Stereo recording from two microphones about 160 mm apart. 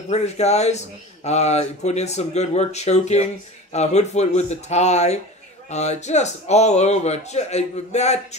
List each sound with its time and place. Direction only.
0.1 s speech: 45° left (ahead or behind)